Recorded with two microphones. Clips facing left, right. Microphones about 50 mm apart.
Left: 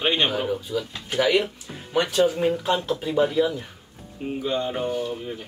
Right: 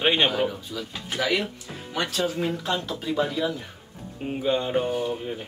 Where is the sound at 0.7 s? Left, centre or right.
Centre.